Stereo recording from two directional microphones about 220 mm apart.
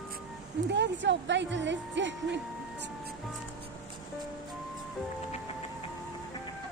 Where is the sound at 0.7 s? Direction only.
55° right (ahead or behind).